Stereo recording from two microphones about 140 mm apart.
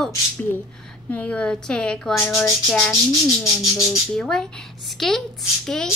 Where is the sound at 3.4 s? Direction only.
25° left (ahead or behind).